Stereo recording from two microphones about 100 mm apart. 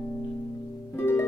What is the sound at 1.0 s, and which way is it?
Harp, 25° left (ahead or behind).